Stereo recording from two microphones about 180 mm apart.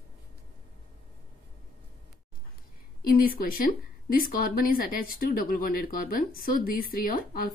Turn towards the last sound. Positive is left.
turn(degrees=50)  # may be behind; listen again after turning